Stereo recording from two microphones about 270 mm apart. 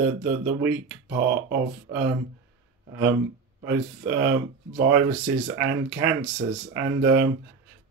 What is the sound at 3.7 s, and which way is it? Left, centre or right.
Speech, right.